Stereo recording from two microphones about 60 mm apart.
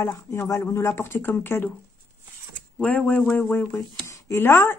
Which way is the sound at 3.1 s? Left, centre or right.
Left.